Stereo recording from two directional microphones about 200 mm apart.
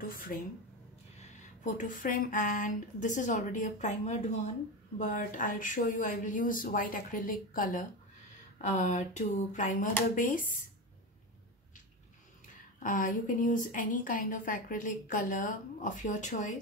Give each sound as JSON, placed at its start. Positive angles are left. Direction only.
{"t": 0.0, "sound": "a woman's voice", "side_deg": 45}
{"t": 12.8, "sound": "a woman's voice", "side_deg": 40}